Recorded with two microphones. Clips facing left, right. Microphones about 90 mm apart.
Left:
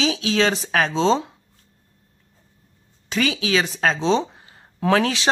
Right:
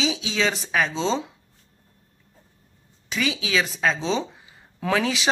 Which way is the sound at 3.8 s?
40° left (ahead or behind).